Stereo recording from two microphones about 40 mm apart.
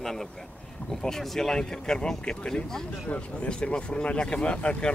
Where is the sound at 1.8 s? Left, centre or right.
Left.